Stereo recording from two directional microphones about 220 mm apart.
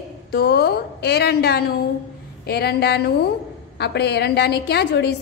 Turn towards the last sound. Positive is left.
turn(degrees=50)  # may be behind; listen again after turning